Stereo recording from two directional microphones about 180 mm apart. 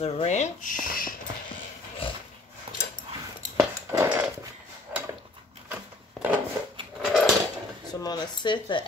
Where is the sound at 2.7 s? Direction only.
30° right (ahead or behind).